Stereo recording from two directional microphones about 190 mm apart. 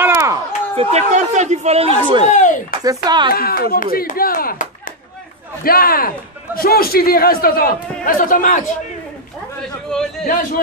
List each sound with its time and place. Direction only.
0.0 s chop: 15° right (ahead or behind)
0.7 s speech: 35° right (ahead or behind)
2.2 s speech: 40° left (ahead or behind)
2.8 s speech: 20° right (ahead or behind)
3.3 s a man's voice: 55° left (ahead or behind)
10.2 s a man's voice: 45° left (ahead or behind)